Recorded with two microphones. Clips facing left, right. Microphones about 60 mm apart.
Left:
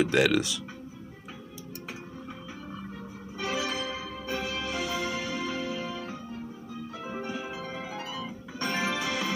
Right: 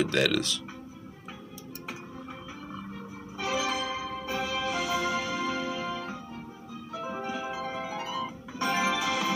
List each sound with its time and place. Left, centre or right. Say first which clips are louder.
0.0 s speech: left 2 dB; centre
3.3 s music: right 2 dB; centre